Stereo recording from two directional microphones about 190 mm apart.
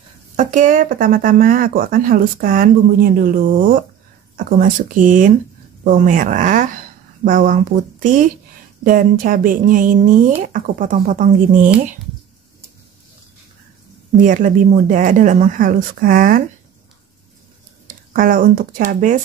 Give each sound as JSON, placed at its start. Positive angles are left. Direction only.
{"t": 0.4, "sound": "a woman's voice", "side_deg": -40}
{"t": 14.2, "sound": "speech", "side_deg": -45}
{"t": 17.8, "sound": "speech", "side_deg": -45}